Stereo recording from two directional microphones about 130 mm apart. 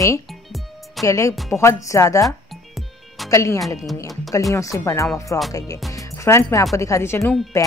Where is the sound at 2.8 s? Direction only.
Centre (ahead or behind).